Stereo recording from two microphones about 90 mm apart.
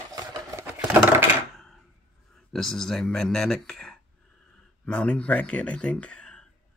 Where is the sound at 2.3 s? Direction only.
5° left (ahead or behind).